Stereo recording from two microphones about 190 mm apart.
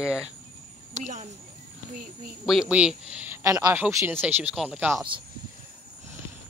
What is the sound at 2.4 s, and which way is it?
Speech, centre (ahead or behind).